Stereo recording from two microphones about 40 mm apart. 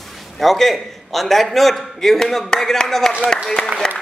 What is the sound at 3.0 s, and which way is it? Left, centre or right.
Speech, centre.